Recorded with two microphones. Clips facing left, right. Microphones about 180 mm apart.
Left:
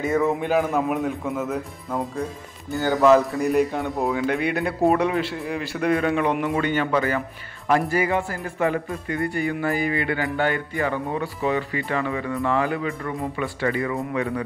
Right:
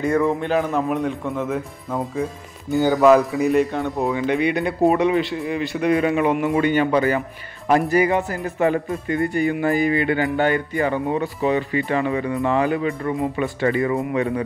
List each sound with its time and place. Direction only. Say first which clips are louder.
0.0 s speech: right 2 dB; 5° left (ahead or behind)
6.5 s speech: right 4 dB; 15° right (ahead or behind)